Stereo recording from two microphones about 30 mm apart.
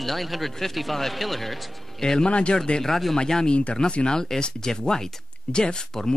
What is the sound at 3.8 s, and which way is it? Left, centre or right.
Speech, left.